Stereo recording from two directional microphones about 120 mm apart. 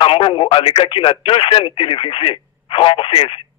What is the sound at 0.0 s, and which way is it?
Speech, 45° left (ahead or behind).